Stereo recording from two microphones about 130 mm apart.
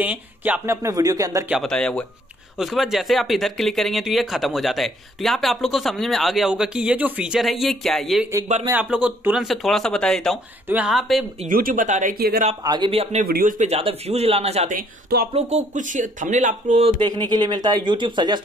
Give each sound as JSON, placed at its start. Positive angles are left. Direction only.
{"t": 0.0, "sound": "speech", "side_deg": -10}
{"t": 1.6, "sound": "speech", "side_deg": 5}
{"t": 8.7, "sound": "speech", "side_deg": -10}
{"t": 10.7, "sound": "speech", "side_deg": -5}
{"t": 11.4, "sound": "speech", "side_deg": -90}
{"t": 12.6, "sound": "speech", "side_deg": -35}
{"t": 13.2, "sound": "speech", "side_deg": -90}
{"t": 13.7, "sound": "speech", "side_deg": -50}
{"t": 15.3, "sound": "speech", "side_deg": -65}
{"t": 16.8, "sound": "speech", "side_deg": -35}